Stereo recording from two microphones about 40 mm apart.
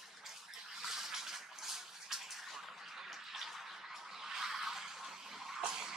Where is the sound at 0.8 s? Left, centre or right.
Centre.